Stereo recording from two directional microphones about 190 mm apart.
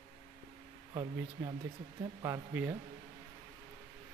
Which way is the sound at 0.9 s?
20° right (ahead or behind).